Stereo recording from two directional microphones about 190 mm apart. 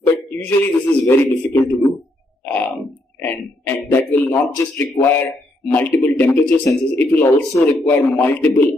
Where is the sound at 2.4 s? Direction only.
10° left (ahead or behind).